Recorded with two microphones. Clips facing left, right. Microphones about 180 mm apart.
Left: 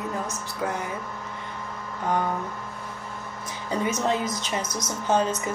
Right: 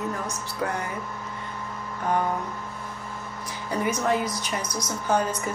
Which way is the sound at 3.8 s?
25° left (ahead or behind).